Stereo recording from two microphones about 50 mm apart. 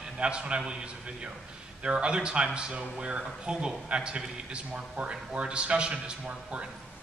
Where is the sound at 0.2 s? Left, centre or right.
Right.